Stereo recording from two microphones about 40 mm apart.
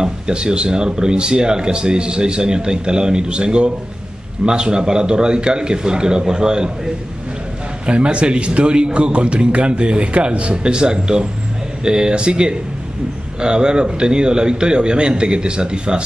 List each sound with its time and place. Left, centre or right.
0.0 s speech: centre
7.8 s speech: right